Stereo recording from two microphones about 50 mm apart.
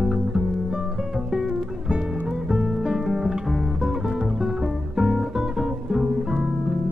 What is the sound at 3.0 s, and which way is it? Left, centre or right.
Music, centre.